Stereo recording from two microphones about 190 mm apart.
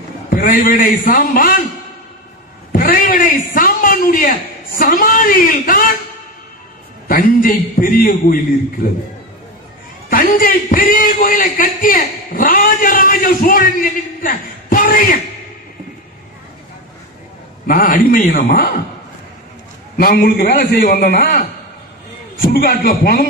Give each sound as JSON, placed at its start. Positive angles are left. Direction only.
{"t": 0.3, "sound": "a man's voice", "side_deg": 50}
{"t": 2.7, "sound": "a sound", "side_deg": 50}
{"t": 7.1, "sound": "a man's voice", "side_deg": 50}
{"t": 10.0, "sound": "a man's voice", "side_deg": 50}
{"t": 17.6, "sound": "a man's voice", "side_deg": 45}
{"t": 20.0, "sound": "a man's voice", "side_deg": 50}